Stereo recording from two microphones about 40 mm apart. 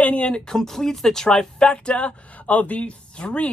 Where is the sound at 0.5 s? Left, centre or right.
Centre.